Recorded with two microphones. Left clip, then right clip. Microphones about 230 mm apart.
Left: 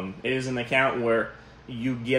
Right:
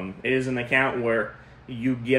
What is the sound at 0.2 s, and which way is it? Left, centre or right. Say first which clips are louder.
Speech: right 3 dB; centre.